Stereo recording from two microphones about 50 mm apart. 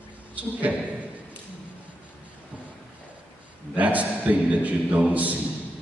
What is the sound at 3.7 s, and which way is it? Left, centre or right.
A man's voice, right.